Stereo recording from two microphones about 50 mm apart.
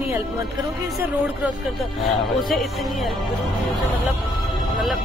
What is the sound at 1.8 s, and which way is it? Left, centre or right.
Speech, centre.